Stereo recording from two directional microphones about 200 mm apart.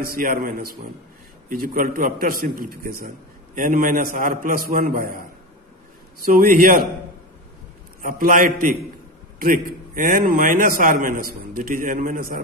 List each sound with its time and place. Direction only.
0.0 s a man's voice: 45° right (ahead or behind)
6.2 s a man's voice: 45° right (ahead or behind)
8.0 s a man's voice: 45° right (ahead or behind)